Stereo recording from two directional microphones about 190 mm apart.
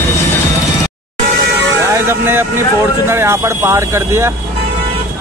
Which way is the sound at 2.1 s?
10° right (ahead or behind).